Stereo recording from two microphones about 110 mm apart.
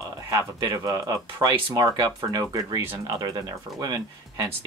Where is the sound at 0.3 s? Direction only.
35° right (ahead or behind).